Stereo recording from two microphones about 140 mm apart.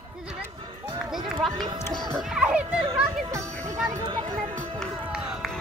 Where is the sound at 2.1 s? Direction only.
5° right (ahead or behind).